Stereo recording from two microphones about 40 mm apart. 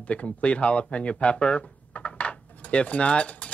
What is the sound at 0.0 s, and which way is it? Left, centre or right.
Music, left.